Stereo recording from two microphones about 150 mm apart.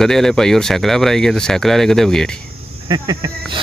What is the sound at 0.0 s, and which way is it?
Speech, 5° left (ahead or behind).